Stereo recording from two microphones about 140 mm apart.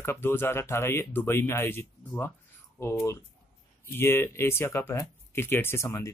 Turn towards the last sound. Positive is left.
turn(degrees=20)  # may be behind; listen again after turning